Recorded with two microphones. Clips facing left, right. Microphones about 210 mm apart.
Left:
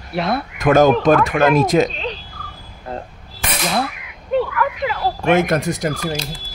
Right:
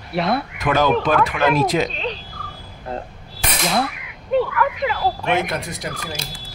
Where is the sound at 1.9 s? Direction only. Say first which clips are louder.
Even; centre (ahead or behind).